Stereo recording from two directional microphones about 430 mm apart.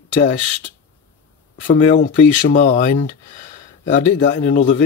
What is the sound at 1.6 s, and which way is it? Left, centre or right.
Speech, centre.